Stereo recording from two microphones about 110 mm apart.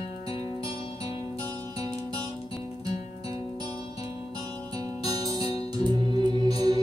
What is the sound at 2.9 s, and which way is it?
Music, 65° left (ahead or behind).